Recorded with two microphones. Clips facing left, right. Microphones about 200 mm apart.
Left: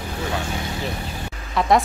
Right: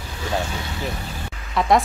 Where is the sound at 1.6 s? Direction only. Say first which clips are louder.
Even; centre (ahead or behind).